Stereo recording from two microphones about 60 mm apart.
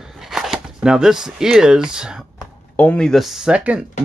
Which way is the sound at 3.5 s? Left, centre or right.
Centre.